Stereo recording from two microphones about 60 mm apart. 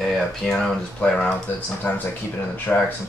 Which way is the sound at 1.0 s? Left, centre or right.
Left.